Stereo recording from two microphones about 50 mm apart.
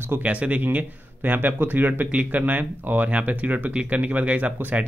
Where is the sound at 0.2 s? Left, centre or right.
Right.